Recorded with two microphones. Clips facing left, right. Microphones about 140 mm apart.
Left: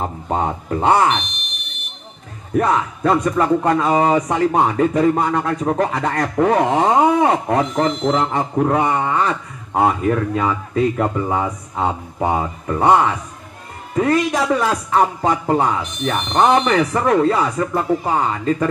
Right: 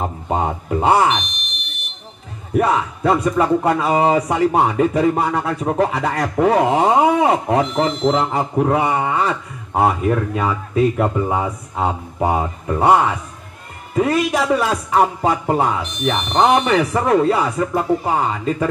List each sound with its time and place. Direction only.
0.0 s speech: 10° right (ahead or behind)
2.5 s a man's voice: 10° right (ahead or behind)